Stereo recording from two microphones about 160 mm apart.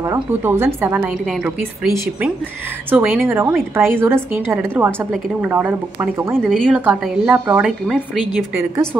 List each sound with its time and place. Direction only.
0.0 s a woman's voice: 15° right (ahead or behind)
6.4 s a woman's voice: centre (ahead or behind)